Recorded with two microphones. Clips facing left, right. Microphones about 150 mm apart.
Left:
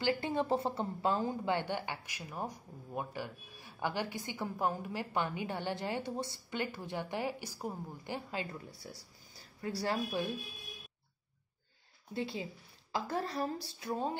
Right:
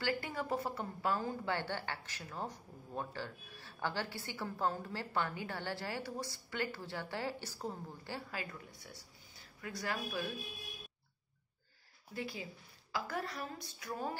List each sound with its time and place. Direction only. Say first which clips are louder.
0.0 s a woman's voice: left 5 dB; 25° left (ahead or behind)
12.1 s a woman's voice: left 5 dB; 25° left (ahead or behind)